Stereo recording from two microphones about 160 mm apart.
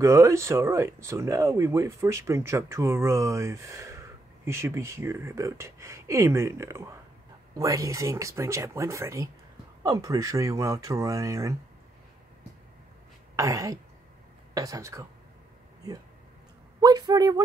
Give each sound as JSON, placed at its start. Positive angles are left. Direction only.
{"t": 0.0, "sound": "speech", "side_deg": -20}
{"t": 13.4, "sound": "speech", "side_deg": -20}
{"t": 16.8, "sound": "speech", "side_deg": -25}